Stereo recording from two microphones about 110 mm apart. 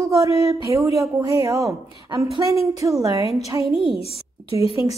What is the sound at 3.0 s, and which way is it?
Speech, 35° right (ahead or behind).